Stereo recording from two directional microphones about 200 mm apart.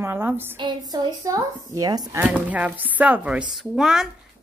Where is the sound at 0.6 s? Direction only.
20° right (ahead or behind).